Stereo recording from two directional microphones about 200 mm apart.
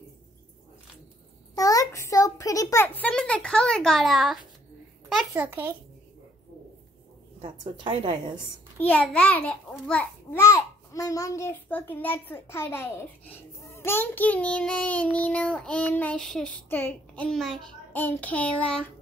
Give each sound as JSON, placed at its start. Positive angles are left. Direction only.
{"t": 1.5, "sound": "a child's voice", "side_deg": 15}
{"t": 7.4, "sound": "a woman's voice", "side_deg": -25}
{"t": 8.7, "sound": "child singing", "side_deg": 5}